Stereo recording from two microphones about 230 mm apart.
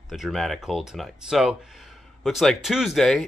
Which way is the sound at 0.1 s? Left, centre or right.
Centre.